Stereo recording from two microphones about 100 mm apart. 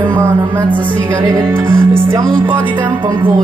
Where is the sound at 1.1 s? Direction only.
30° right (ahead or behind).